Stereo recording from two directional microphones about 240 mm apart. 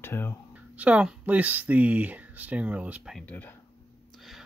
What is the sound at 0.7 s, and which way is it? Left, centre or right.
Speech, centre.